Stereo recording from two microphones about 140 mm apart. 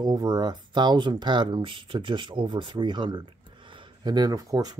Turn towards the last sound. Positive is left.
turn(degrees=-25)  # may be behind; listen again after turning